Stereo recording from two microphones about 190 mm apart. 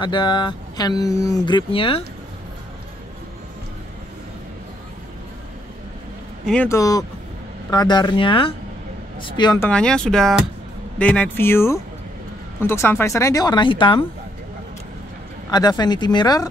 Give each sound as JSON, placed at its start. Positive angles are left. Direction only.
{"t": 0.0, "sound": "speech", "side_deg": 25}
{"t": 6.4, "sound": "speech", "side_deg": 5}
{"t": 9.7, "sound": "speech", "side_deg": 5}
{"t": 15.5, "sound": "speech", "side_deg": 20}